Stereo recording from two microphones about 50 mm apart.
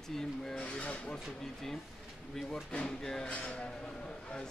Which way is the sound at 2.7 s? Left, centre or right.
Centre.